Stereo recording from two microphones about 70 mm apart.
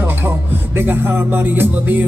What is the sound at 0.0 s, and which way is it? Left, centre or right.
Music, right.